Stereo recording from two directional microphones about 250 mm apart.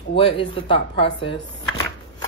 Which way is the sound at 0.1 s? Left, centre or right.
Left.